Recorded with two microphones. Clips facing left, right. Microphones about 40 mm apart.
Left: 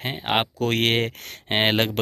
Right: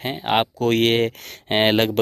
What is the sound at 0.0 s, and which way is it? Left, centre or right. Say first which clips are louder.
Speech: right 3 dB; left.